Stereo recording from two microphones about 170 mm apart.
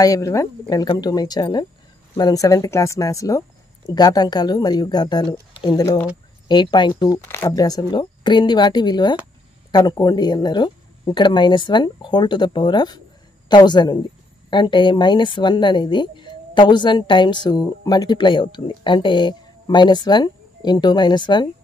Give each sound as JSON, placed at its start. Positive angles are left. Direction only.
{"t": 0.0, "sound": "speech", "side_deg": 20}